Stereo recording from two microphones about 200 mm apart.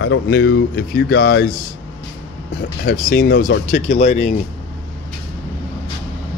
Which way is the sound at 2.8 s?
55° left (ahead or behind).